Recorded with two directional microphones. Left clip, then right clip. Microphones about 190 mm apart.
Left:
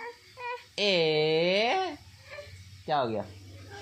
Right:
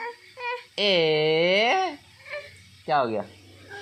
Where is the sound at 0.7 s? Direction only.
25° right (ahead or behind).